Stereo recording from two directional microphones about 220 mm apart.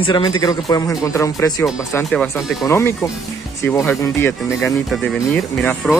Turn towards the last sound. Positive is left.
turn(degrees=0)  # may be behind; listen again after turning